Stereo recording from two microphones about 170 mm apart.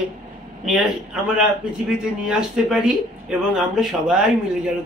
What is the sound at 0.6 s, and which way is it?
A man's voice, centre (ahead or behind).